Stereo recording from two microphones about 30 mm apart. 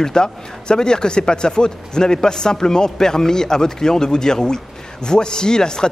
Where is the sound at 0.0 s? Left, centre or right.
Left.